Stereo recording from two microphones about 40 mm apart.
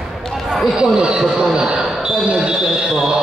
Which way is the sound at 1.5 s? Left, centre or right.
Centre.